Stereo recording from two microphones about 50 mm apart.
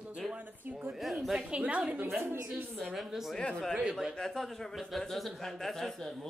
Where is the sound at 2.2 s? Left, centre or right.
Right.